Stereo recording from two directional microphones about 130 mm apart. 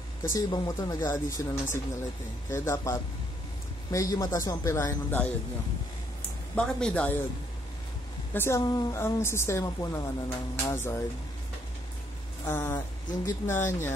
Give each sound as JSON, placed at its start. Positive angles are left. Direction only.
{"t": 0.3, "sound": "a woman's voice", "side_deg": 30}
{"t": 6.5, "sound": "speech", "side_deg": 5}
{"t": 8.3, "sound": "a woman's voice", "side_deg": 20}
{"t": 12.4, "sound": "a woman's voice", "side_deg": 20}